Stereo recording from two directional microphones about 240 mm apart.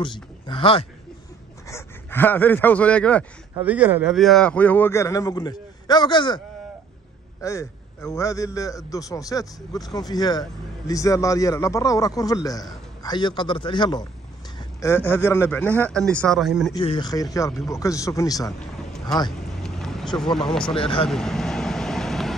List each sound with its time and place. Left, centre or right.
0.0 s speech: left
1.7 s speech: centre
3.5 s speech: centre
7.4 s a man's voice: centre
16.7 s speech: centre
19.4 s vehicle: centre
20.7 s a man's voice: left
21.1 s vehicle: centre